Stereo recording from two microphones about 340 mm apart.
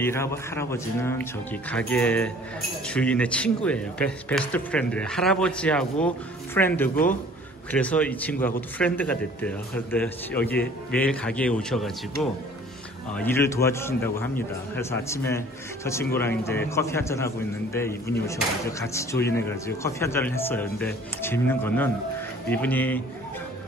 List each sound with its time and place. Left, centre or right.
0.0 s a man's voice: centre